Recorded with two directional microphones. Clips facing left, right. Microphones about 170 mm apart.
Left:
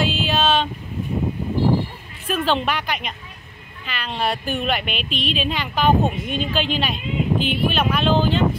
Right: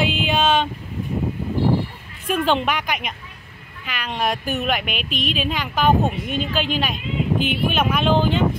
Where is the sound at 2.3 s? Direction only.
10° right (ahead or behind).